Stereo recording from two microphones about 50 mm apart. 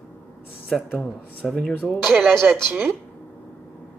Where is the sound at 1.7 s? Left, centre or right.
Left.